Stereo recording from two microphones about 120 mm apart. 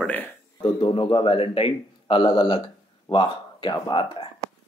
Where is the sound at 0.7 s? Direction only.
45° left (ahead or behind).